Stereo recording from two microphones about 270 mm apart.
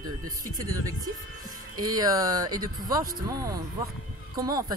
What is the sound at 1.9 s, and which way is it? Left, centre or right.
Speech, centre.